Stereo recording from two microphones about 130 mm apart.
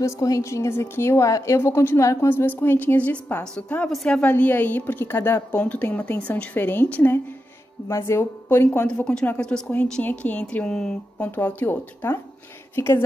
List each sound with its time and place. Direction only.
0.0 s a woman's voice: 25° left (ahead or behind)